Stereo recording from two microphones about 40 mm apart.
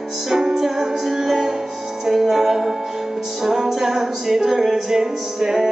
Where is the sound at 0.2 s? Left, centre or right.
Centre.